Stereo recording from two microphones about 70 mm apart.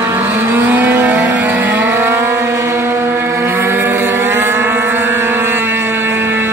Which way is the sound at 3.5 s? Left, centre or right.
Right.